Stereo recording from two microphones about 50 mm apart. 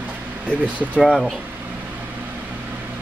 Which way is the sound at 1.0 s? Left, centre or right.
Centre.